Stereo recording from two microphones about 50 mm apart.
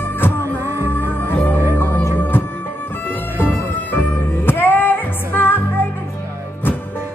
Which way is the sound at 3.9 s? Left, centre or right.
Left.